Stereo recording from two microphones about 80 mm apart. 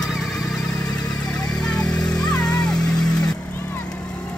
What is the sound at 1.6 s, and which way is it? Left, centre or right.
Vehicle, centre.